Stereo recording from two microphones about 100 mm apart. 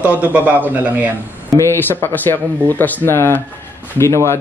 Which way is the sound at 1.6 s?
20° left (ahead or behind).